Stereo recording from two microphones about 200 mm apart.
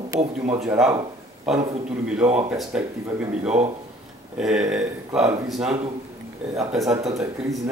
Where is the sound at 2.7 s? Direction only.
5° right (ahead or behind).